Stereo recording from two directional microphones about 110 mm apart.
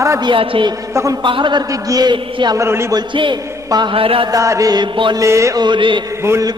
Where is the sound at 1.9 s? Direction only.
40° right (ahead or behind).